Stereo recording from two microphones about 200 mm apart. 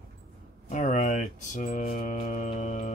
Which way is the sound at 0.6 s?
35° left (ahead or behind).